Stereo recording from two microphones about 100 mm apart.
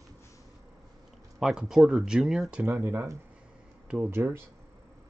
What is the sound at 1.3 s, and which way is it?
Speech, 5° right (ahead or behind).